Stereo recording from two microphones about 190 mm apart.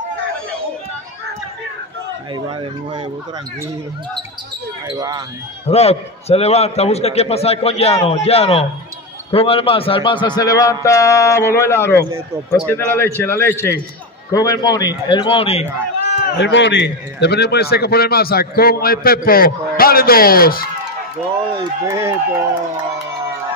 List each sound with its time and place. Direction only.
4.8 s speech: 20° right (ahead or behind)
5.7 s a man's voice: 35° left (ahead or behind)
16.1 s a sound: 35° left (ahead or behind)
16.3 s a man's voice: 70° left (ahead or behind); by 20.6 s 50° left (ahead or behind)
21.8 s speech: 15° right (ahead or behind)